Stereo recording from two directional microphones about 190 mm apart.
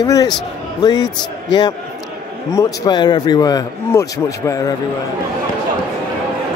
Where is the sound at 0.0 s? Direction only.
20° left (ahead or behind).